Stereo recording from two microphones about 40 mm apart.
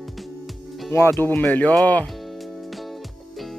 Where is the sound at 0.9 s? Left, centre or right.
Left.